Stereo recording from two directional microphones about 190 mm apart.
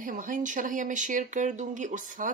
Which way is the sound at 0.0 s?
45° right (ahead or behind).